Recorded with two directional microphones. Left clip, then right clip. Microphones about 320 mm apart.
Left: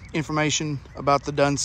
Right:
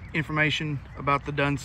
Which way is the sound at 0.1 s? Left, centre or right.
Centre.